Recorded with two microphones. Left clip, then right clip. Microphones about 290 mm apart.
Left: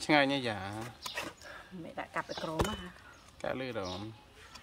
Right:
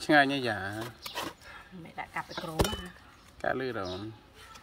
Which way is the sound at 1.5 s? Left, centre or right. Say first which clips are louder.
Even; centre.